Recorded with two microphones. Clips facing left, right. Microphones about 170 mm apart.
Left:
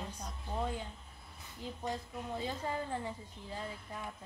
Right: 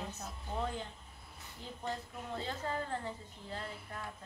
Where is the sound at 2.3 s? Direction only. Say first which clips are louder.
Even; 15° left (ahead or behind).